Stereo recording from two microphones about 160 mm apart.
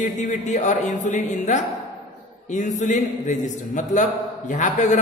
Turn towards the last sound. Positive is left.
turn(degrees=50)  # may be behind; listen again after turning